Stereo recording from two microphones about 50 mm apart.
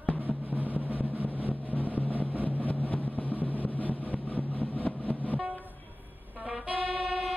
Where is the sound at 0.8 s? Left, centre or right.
Left.